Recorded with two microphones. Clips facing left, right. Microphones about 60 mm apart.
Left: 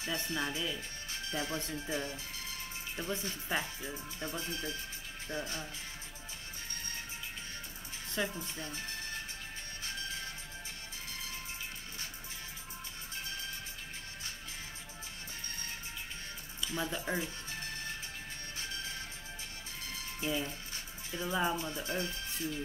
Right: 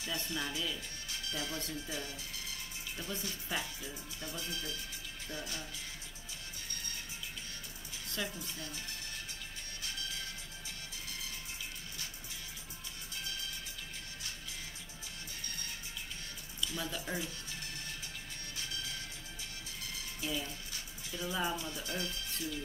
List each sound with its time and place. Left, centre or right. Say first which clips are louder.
0.0 s speech: left 3 dB; left
8.1 s a woman's voice: left 4 dB; left
9.8 s music: left 2 dB; left
16.6 s music: left 3 dB; left
20.2 s music: left 4 dB; left
21.5 s speech: left 3 dB; left